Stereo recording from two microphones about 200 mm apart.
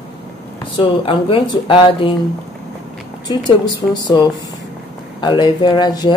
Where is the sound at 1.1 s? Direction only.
25° left (ahead or behind).